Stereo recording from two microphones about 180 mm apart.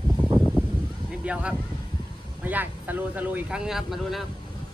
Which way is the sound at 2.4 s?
10° right (ahead or behind).